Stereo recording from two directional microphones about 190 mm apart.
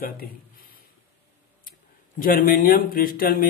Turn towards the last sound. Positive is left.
turn(degrees=50)  # may be behind; listen again after turning